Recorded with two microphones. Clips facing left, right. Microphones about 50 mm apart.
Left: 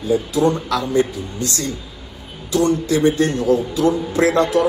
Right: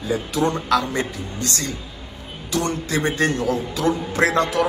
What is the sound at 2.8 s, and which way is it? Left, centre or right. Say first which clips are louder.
Speech: left 5 dB; right.